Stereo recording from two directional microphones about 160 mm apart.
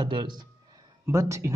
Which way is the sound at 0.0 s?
30° right (ahead or behind).